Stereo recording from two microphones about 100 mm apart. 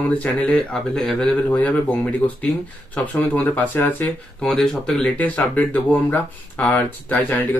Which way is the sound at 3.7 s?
20° left (ahead or behind).